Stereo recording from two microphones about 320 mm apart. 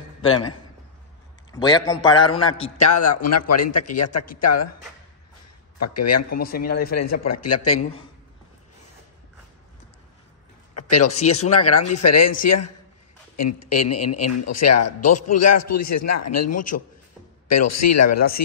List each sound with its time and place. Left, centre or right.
1.5 s a man's voice: centre
2.8 s a man's voice: left
5.8 s a man's voice: left
6.4 s speech: left
6.9 s a man's voice: left
10.7 s a sound: left
11.2 s a man's voice: left